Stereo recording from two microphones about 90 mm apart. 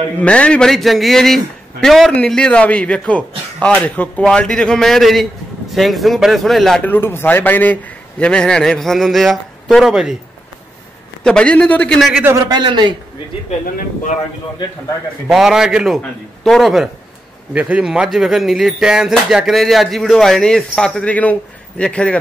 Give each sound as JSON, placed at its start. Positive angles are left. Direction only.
{"t": 0.2, "sound": "a man's voice", "side_deg": 10}
{"t": 6.8, "sound": "a man's voice", "side_deg": 20}
{"t": 11.2, "sound": "a man's voice", "side_deg": 10}
{"t": 12.4, "sound": "a man's voice", "side_deg": -55}
{"t": 15.2, "sound": "speech", "side_deg": -5}
{"t": 17.5, "sound": "speech", "side_deg": -15}